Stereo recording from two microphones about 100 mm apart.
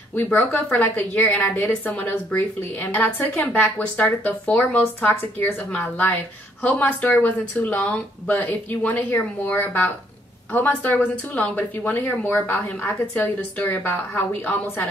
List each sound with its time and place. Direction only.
0.5 s a woman's voice: 15° left (ahead or behind)